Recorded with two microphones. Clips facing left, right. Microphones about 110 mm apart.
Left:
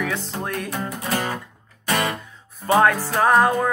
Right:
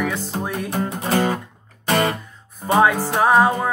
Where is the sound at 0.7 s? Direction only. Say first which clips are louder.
Right 8 dB; 30° right (ahead or behind).